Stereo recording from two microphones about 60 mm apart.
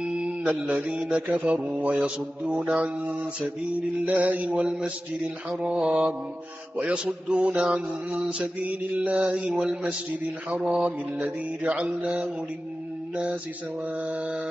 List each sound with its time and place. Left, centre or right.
0.7 s mantra: centre
1.1 s mantra: right
14.0 s mantra: right